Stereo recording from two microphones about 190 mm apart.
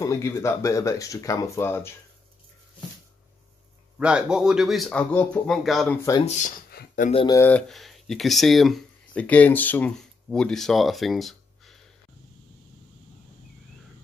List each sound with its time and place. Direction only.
0.0 s speech: 15° left (ahead or behind)
4.0 s speech: 5° right (ahead or behind)
6.2 s speech: 40° left (ahead or behind)
6.7 s a sound: 55° left (ahead or behind)
7.2 s speech: 10° left (ahead or behind)